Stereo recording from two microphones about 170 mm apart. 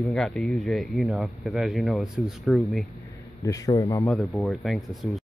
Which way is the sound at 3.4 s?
20° left (ahead or behind).